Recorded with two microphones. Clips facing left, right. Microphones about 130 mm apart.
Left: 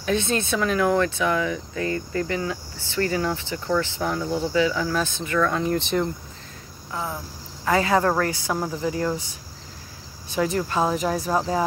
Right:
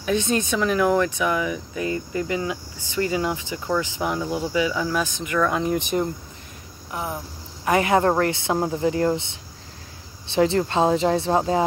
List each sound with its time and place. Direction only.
0.0 s speech: 15° right (ahead or behind)
6.9 s cricket: 20° right (ahead or behind)
7.6 s speech: 20° right (ahead or behind)